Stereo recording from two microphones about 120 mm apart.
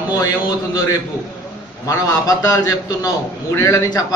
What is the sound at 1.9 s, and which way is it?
A man's voice, 25° left (ahead or behind).